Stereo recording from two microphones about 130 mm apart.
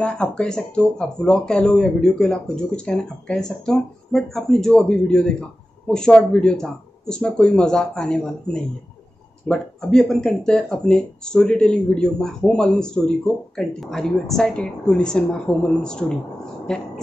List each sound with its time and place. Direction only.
0.0 s a woman's voice: 10° left (ahead or behind)